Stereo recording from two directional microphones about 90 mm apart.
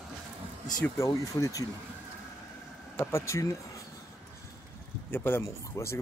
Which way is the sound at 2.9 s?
30° left (ahead or behind).